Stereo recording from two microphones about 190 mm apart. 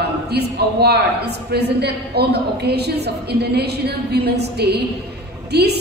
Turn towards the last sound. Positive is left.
turn(degrees=-60)  # may be behind; listen again after turning